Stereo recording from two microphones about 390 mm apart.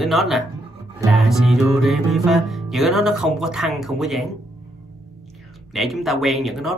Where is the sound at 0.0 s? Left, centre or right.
Centre.